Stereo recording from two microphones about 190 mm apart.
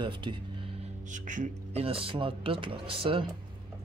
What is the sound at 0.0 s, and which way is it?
Speech, 25° right (ahead or behind).